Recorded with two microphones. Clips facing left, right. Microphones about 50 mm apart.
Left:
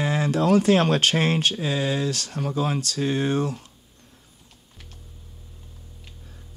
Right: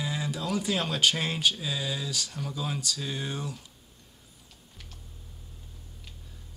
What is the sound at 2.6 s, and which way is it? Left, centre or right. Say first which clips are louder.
Speech: left 9 dB; left.